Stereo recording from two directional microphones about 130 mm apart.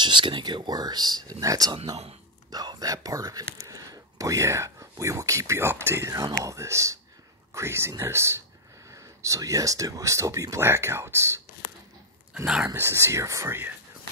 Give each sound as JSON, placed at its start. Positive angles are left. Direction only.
{"t": 0.0, "sound": "speech", "side_deg": -40}
{"t": 12.6, "sound": "speech", "side_deg": -20}